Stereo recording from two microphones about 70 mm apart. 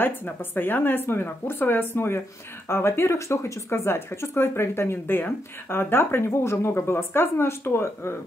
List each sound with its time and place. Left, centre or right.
0.0 s speech: left